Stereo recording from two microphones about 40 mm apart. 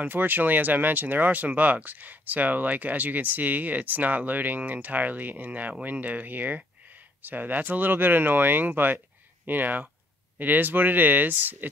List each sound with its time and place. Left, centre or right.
0.1 s speech: right